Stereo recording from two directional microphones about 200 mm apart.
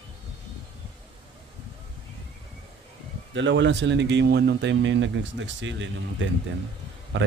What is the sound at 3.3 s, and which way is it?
Speech, 65° right (ahead or behind).